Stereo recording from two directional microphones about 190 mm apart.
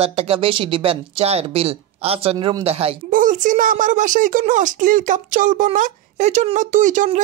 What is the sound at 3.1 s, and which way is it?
Speech, 45° right (ahead or behind).